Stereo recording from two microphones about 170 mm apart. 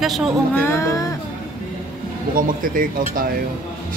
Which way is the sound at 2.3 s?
55° right (ahead or behind).